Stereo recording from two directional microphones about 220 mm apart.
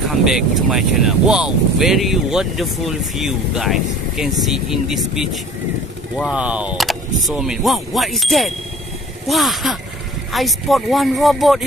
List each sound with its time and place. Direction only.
0.0 s speech: centre (ahead or behind)